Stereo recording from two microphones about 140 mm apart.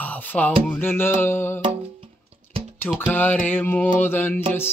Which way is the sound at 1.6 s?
40° right (ahead or behind).